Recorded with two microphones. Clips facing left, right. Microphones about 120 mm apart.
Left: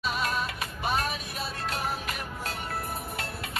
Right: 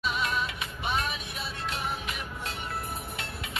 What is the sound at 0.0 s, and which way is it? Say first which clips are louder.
Music: even; 40° left (ahead or behind).